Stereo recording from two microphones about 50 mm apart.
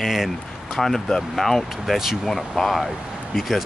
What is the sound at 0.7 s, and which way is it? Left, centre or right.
Speech, centre.